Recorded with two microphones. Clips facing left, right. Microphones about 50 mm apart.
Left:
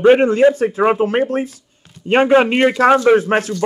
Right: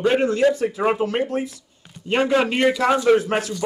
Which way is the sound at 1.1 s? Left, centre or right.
Left.